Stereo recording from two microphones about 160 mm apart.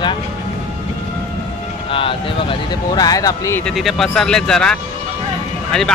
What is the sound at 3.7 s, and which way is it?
Speech, centre (ahead or behind).